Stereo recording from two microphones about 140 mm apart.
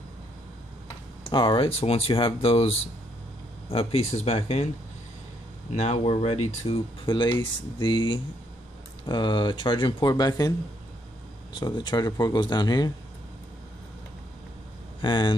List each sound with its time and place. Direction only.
1.2 s speech: 35° left (ahead or behind)
5.7 s speech: 50° left (ahead or behind); by 10.5 s 30° left (ahead or behind)
11.5 s speech: 30° left (ahead or behind)
15.0 s speech: 30° left (ahead or behind)